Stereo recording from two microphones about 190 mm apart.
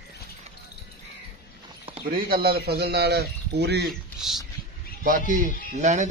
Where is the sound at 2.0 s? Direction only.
50° right (ahead or behind).